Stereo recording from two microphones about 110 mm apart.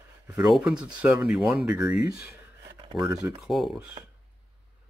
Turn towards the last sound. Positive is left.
turn(degrees=0)  # may be behind; listen again after turning